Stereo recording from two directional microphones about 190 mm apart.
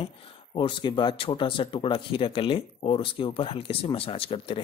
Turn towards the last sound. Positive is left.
turn(degrees=30)  # may be behind; listen again after turning